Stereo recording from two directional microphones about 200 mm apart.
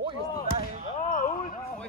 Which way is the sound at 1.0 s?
45° left (ahead or behind).